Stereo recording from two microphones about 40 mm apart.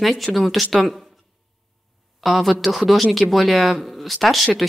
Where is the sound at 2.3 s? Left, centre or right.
Centre.